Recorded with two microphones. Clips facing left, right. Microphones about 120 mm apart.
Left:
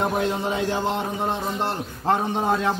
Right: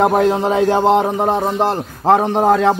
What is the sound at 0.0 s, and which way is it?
A man's voice, 85° right.